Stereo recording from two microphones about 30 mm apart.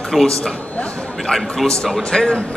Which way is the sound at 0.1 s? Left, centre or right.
Centre.